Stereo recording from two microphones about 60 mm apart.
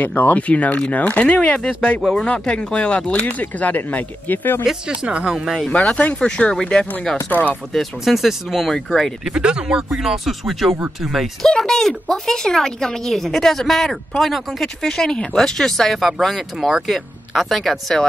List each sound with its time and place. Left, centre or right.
0.0 s speech: left
4.6 s speech: centre
5.7 s speech: left
7.2 s speech: left
7.7 s speech: centre
9.2 s speech: centre
11.4 s speech: centre